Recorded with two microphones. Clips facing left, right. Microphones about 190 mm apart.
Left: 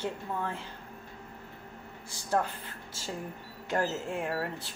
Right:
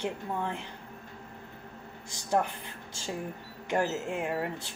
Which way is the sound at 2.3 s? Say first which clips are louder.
Right 1 dB; 15° right (ahead or behind).